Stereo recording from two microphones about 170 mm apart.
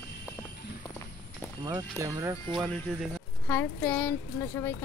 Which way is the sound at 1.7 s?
20° right (ahead or behind).